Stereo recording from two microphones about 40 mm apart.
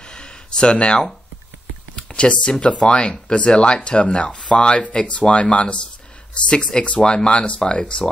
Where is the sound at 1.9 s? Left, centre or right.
Left.